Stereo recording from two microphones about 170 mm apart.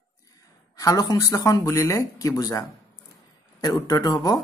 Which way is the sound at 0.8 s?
20° left (ahead or behind).